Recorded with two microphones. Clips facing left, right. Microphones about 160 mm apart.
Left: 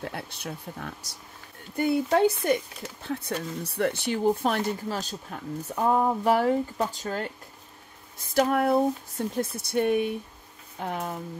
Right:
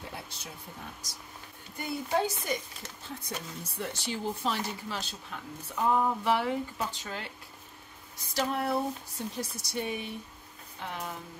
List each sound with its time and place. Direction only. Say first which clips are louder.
0.0 s speech: left 7 dB; 60° left (ahead or behind); by 11.1 s 45° left (ahead or behind)